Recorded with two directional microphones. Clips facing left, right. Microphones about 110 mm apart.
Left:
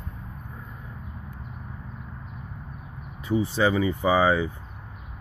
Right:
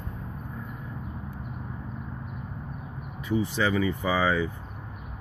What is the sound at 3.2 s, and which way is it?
Speech, 30° left (ahead or behind).